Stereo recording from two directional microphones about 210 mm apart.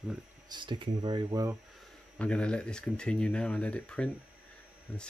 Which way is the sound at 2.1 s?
5° left (ahead or behind).